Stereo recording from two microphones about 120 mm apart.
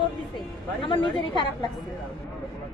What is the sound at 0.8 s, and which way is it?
Speech, 40° left (ahead or behind).